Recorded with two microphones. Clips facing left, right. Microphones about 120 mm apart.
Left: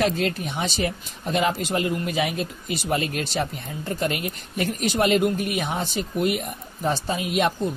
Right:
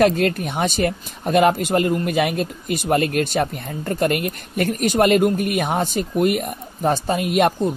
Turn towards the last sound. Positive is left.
turn(degrees=-55)  # may be behind; listen again after turning